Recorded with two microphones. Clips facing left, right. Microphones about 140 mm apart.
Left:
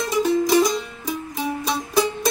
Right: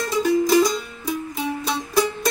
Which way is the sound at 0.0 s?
20° left (ahead or behind).